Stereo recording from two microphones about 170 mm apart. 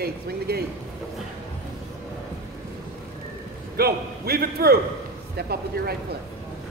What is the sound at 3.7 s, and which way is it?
A man's voice, 65° right (ahead or behind).